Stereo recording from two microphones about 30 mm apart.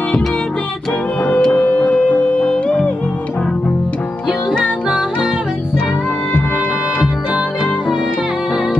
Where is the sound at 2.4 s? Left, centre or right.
Left.